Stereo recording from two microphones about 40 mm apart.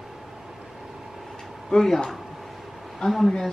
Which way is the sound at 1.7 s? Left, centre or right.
Centre.